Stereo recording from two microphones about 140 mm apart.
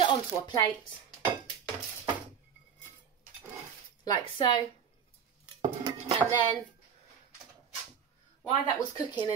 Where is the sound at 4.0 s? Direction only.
30° left (ahead or behind).